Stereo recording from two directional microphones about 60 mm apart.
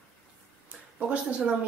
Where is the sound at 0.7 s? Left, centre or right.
Right.